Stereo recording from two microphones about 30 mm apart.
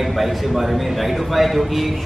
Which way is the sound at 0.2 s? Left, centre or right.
Centre.